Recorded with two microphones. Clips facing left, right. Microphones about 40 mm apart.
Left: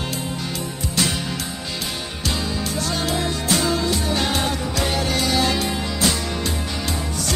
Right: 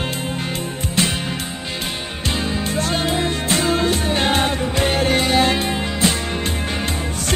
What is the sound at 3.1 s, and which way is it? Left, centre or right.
Music, right.